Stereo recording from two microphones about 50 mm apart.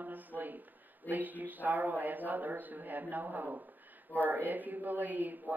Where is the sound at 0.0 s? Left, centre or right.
Right.